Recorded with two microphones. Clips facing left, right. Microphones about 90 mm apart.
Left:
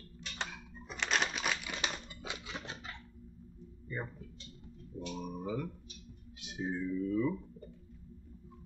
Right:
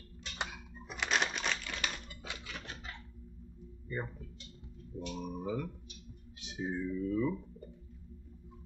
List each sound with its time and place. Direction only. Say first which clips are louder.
0.4 s typewriter: right 1 dB; 5° right (ahead or behind); by 1.9 s 15° left (ahead or behind)
1.9 s typewriter: left 2 dB; 25° left (ahead or behind)
3.9 s speech: right 2 dB; centre (ahead or behind)
5.1 s speech: right 1 dB; 5° left (ahead or behind)